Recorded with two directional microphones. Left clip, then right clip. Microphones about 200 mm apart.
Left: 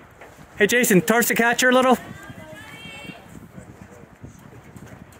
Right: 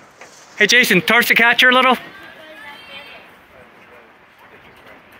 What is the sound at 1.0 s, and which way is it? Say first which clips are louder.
Speech: right 7 dB; 30° left (ahead or behind).